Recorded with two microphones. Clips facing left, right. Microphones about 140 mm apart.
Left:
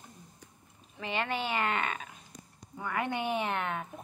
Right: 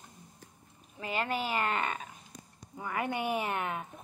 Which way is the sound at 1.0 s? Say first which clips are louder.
Even; 40° right (ahead or behind).